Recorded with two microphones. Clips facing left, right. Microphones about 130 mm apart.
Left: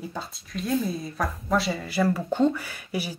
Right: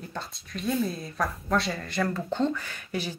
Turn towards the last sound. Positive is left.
turn(degrees=10)  # may be behind; listen again after turning